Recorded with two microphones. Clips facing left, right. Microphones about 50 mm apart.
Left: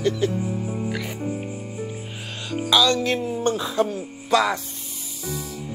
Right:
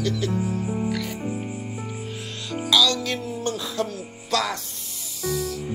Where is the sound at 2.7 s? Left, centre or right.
Left.